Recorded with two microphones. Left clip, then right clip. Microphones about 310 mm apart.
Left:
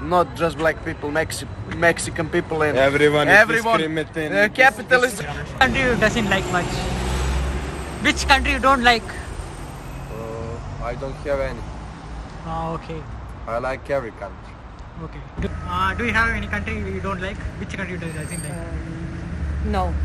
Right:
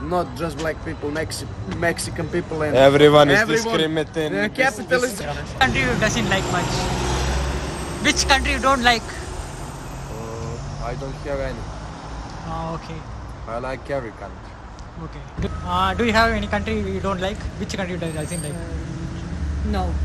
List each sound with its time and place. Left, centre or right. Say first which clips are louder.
0.1 s speech: left 5 dB; centre
2.7 s speech: right 6 dB; right
3.3 s speech: left 4 dB; centre
3.8 s speech: right 2 dB; centre
4.3 s speech: left 8 dB; centre
8.0 s speech: left 1 dB; centre
10.9 s speech: left 3 dB; centre
13.5 s speech: left 3 dB; centre
15.4 s speech: right 2 dB; centre